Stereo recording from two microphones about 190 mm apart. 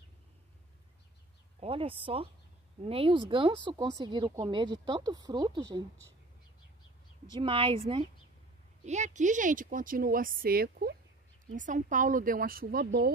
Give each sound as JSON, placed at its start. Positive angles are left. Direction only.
{"t": 1.6, "sound": "speech", "side_deg": -30}
{"t": 7.3, "sound": "speech", "side_deg": -25}
{"t": 8.8, "sound": "speech", "side_deg": -40}
{"t": 11.5, "sound": "speech", "side_deg": -40}